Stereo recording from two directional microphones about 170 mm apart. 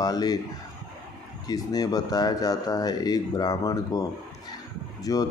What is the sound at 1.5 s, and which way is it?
Speech, 20° left (ahead or behind).